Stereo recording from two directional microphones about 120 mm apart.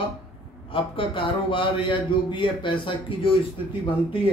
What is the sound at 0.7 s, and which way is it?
Speech, 45° left (ahead or behind).